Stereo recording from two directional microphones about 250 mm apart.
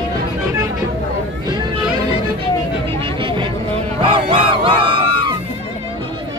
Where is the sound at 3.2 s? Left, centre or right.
Centre.